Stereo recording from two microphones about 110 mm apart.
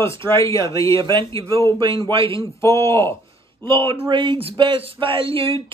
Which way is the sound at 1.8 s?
50° right (ahead or behind).